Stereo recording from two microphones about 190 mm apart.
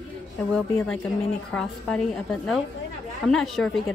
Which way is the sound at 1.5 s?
5° left (ahead or behind).